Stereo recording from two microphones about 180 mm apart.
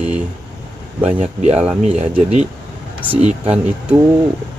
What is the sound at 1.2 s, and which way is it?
Speech, 40° right (ahead or behind).